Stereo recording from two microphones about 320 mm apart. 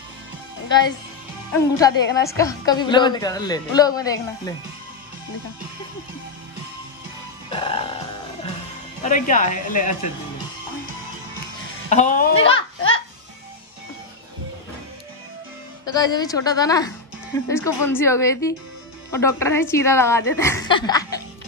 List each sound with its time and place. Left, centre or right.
1.5 s a woman's voice: centre
7.4 s music: centre
9.0 s speech: left
11.9 s speech: left
12.4 s a child's voice: left
15.8 s a woman's voice: centre